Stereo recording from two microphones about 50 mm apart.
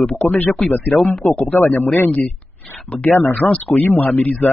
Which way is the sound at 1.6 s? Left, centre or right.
Left.